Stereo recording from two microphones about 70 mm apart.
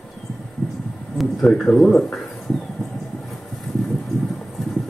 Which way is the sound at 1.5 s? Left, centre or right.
Centre.